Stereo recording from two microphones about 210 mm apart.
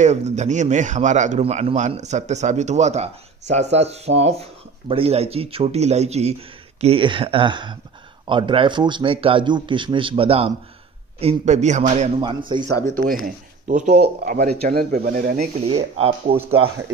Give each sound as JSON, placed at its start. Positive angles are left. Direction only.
{"t": 0.0, "sound": "a man's voice", "side_deg": -35}
{"t": 12.2, "sound": "a man's voice", "side_deg": -20}
{"t": 12.9, "sound": "speech", "side_deg": -40}
{"t": 15.6, "sound": "a man's voice", "side_deg": -30}